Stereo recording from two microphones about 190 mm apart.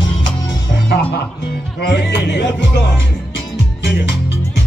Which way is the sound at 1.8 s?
65° left (ahead or behind).